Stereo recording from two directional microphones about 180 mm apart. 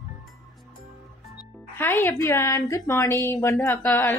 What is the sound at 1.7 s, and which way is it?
A woman's voice, 10° left (ahead or behind).